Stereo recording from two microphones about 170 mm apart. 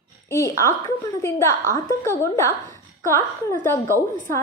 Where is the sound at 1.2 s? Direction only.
15° left (ahead or behind).